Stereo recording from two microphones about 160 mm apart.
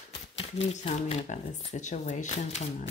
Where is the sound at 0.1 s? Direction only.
35° left (ahead or behind).